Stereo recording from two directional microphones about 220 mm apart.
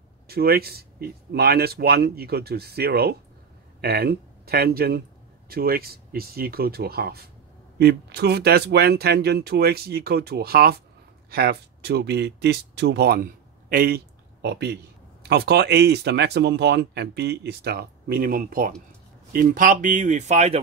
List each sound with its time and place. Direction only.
0.3 s speech: 45° right (ahead or behind)